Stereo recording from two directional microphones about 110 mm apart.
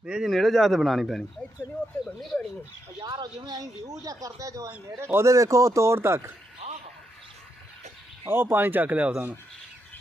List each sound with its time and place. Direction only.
0.0 s speech: 5° right (ahead or behind); by 2.4 s 10° left (ahead or behind)
3.0 s speech: 40° right (ahead or behind); by 6.3 s 25° right (ahead or behind)
6.6 s a sound: 85° right
8.3 s speech: 20° right (ahead or behind)